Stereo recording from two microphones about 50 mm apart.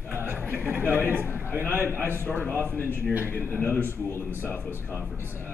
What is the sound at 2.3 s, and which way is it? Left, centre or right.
Speech, left.